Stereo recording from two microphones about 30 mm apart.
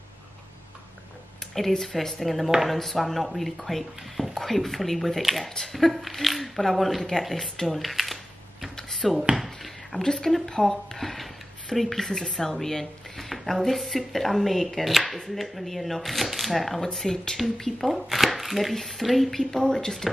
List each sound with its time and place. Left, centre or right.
1.8 s speech: centre
7.7 s a sound: centre
10.0 s speech: centre
11.0 s speech: centre
19.6 s speech: left